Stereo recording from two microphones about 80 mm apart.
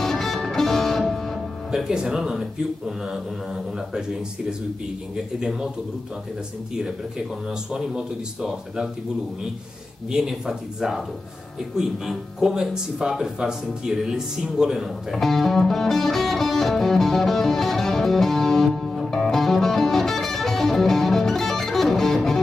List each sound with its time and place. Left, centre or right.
0.0 s music: centre
1.7 s speech: centre
5.1 s speech: centre
6.7 s speech: centre
10.1 s speech: centre